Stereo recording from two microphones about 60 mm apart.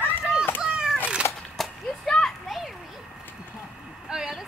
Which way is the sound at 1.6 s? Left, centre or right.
Centre.